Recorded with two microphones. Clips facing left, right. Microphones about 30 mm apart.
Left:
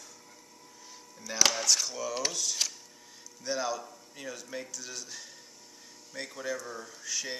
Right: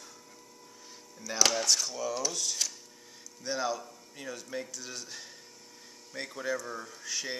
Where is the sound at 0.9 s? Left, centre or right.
Centre.